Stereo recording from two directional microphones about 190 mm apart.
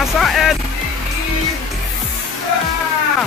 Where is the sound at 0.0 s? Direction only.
Centre (ahead or behind).